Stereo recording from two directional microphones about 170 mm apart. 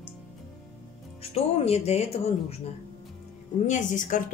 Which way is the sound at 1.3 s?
35° left (ahead or behind).